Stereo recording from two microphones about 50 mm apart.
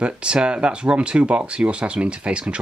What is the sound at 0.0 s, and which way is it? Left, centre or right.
Speech, right.